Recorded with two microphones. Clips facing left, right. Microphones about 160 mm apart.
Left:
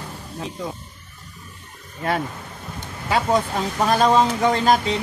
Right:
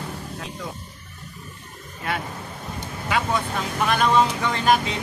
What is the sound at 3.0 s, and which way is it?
Speech, 35° left (ahead or behind).